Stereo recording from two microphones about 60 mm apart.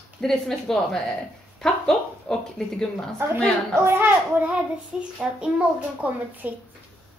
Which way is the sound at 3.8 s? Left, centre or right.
Right.